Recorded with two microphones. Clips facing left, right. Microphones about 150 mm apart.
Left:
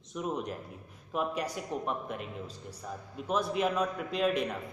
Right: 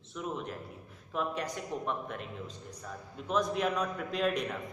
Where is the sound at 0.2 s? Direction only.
15° left (ahead or behind).